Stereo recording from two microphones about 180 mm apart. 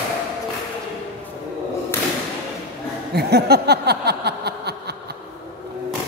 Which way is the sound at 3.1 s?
65° right (ahead or behind).